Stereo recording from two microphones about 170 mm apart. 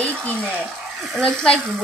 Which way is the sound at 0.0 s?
10° left (ahead or behind).